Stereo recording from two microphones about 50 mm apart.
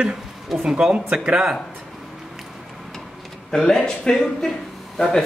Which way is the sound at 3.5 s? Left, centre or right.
Centre.